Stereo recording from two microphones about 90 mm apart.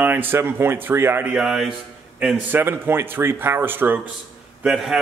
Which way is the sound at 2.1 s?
15° right (ahead or behind).